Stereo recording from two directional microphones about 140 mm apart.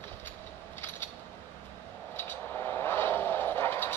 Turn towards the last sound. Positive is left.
turn(degrees=15)  # may be behind; listen again after turning